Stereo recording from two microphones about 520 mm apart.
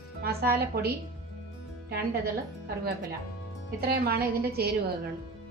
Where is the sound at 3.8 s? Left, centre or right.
Centre.